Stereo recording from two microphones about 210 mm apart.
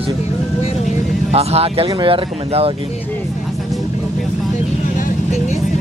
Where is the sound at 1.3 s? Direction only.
30° right (ahead or behind).